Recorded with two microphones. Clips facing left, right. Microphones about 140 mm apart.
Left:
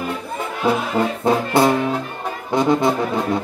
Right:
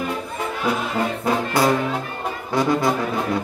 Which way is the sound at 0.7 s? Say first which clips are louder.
Left 5 dB; 30° left (ahead or behind).